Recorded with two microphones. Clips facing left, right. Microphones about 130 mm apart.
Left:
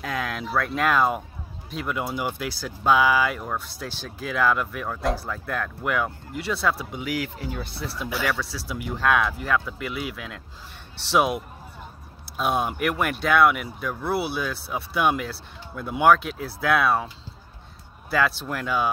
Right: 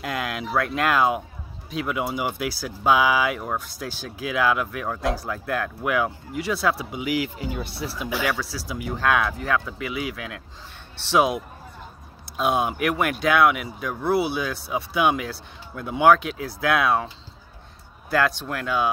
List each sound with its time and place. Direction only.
0.0 s speech: 5° right (ahead or behind)
18.1 s speech: centre (ahead or behind)